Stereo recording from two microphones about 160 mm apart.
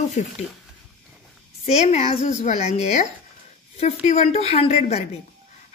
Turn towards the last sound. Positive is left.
turn(degrees=45)  # may be behind; listen again after turning